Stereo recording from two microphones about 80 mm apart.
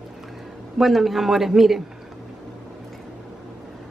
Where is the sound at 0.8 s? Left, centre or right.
Centre.